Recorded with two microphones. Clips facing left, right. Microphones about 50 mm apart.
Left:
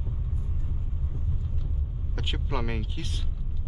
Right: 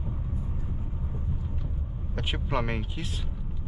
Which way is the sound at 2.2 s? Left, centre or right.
Centre.